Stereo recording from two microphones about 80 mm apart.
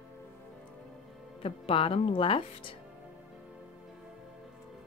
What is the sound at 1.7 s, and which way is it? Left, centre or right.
Speech, left.